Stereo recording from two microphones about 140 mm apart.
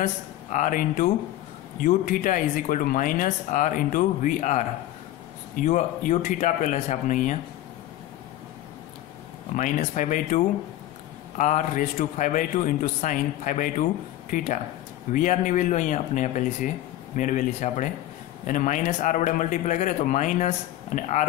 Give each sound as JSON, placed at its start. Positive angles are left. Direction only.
{"t": 0.0, "sound": "a man's voice", "side_deg": 65}
{"t": 9.6, "sound": "a man's voice", "side_deg": 65}